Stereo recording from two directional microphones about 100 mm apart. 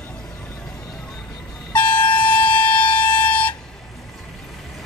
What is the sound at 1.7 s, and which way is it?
Air horn, 15° left (ahead or behind).